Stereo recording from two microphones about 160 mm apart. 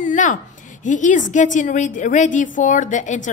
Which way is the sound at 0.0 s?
50° left (ahead or behind).